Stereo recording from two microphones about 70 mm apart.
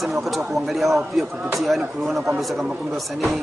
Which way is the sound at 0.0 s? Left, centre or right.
Centre.